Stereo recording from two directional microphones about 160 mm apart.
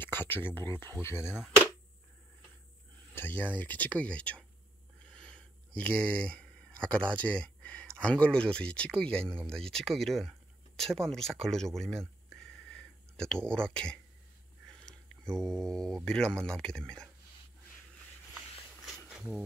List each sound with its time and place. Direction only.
0.0 s speech: 15° left (ahead or behind)
3.2 s speech: 10° left (ahead or behind)
19.0 s a sound: 5° right (ahead or behind)